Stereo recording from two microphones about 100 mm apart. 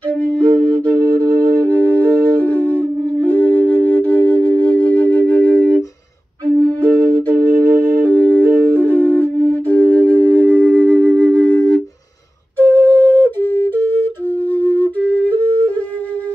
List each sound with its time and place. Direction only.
0.1 s flute: 15° left (ahead or behind)
1.2 s music: 35° right (ahead or behind)
2.0 s music: 15° left (ahead or behind)
3.3 s flute: 15° left (ahead or behind)
4.1 s music: 15° left (ahead or behind)
6.8 s music: 15° left (ahead or behind)
12.5 s flute: 20° left (ahead or behind)